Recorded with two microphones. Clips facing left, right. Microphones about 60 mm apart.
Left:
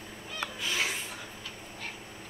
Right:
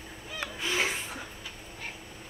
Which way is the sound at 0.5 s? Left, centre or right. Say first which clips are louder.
Right 3 dB; right.